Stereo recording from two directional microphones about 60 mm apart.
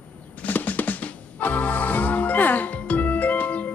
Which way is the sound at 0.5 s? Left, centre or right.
Left.